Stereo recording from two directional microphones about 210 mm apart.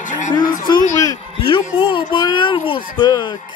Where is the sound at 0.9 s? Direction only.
20° left (ahead or behind).